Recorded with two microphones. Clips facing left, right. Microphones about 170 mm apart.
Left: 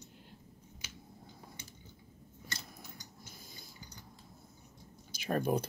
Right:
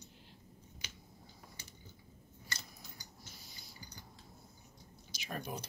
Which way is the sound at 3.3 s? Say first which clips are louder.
Left 4 dB; 50° left (ahead or behind).